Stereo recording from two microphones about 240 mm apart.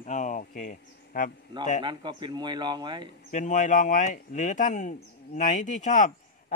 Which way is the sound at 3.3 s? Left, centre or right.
Left.